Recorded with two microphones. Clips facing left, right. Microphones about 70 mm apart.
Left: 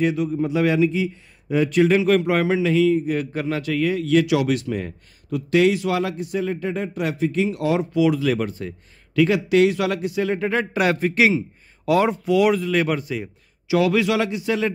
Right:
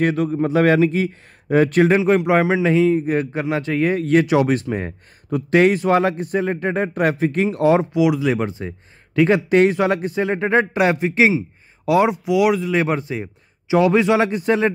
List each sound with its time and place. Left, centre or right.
0.0 s a man's voice: right
1.9 s a man's voice: right
7.9 s a man's voice: centre
9.1 s a man's voice: right; by 12.7 s centre
12.7 s a man's voice: right